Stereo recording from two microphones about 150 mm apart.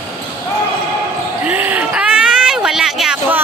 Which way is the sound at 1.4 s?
10° right (ahead or behind).